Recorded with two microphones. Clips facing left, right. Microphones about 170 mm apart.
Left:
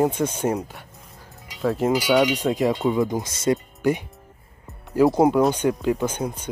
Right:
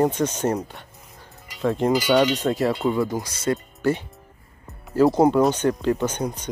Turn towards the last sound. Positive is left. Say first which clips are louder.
# even
turn(degrees=10)  # may be behind; listen again after turning